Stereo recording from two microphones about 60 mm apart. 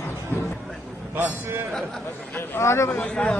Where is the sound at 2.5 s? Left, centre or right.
Left.